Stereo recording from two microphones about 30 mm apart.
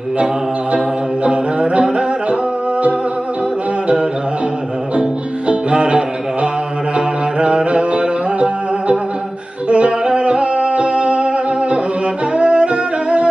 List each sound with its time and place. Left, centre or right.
1.2 s music: right
5.5 s music: right